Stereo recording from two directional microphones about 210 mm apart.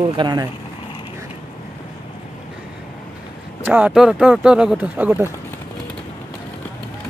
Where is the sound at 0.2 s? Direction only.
20° right (ahead or behind).